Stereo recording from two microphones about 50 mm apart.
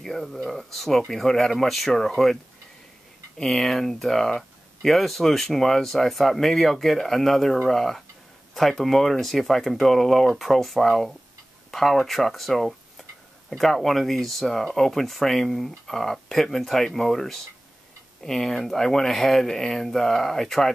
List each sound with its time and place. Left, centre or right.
0.0 s speech: centre
3.4 s speech: centre